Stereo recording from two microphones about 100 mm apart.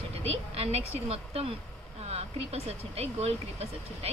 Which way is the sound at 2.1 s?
90° right.